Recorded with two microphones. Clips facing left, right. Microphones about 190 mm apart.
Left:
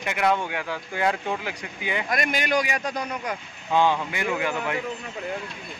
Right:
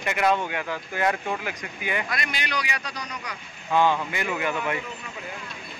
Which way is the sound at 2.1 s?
45° left (ahead or behind).